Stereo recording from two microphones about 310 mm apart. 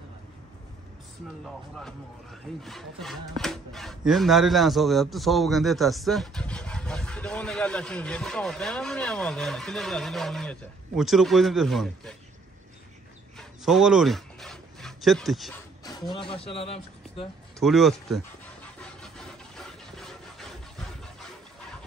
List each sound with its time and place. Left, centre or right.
1.4 s speech: centre
13.4 s rub: centre
15.8 s speech: centre
17.6 s a sound: centre